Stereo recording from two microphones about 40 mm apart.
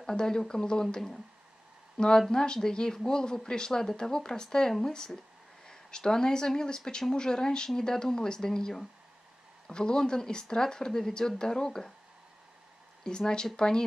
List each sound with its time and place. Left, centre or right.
0.0 s speech: centre
13.0 s speech: centre